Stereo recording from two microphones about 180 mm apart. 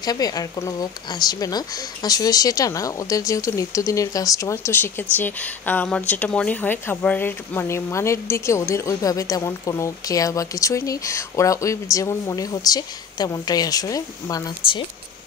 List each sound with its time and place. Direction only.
0.0 s a woman's voice: 20° left (ahead or behind)